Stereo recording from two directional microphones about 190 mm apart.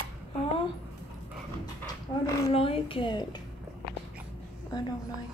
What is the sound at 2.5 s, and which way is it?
Speech, 30° left (ahead or behind).